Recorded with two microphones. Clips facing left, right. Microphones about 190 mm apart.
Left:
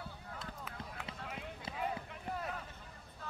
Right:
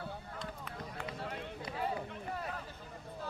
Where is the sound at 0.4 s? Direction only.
5° left (ahead or behind).